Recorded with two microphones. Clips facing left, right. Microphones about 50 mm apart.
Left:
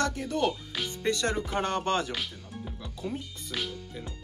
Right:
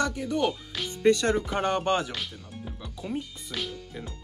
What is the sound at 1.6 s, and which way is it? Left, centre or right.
Music, centre.